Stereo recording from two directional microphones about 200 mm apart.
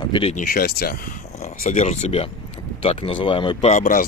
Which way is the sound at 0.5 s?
50° left (ahead or behind).